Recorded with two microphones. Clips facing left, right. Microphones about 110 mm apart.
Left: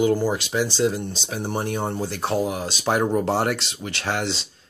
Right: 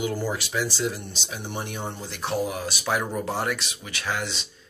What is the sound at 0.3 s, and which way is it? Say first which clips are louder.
Speech: left 4 dB; 30° left (ahead or behind).